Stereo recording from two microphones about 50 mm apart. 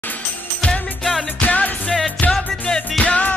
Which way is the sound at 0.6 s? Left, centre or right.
Centre.